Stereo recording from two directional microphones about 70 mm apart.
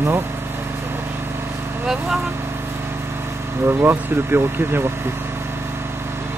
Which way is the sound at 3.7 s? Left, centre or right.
Right.